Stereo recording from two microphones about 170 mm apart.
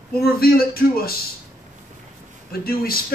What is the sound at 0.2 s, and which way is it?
Speech, 60° left (ahead or behind).